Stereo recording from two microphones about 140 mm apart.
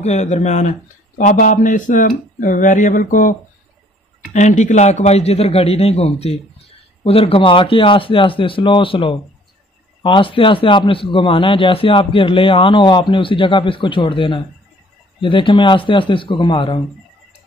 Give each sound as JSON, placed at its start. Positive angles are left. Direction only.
{"t": 0.0, "sound": "speech", "side_deg": 55}
{"t": 4.3, "sound": "a man's voice", "side_deg": 60}